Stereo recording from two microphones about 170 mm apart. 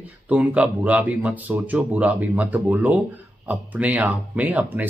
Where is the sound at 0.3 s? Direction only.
10° right (ahead or behind).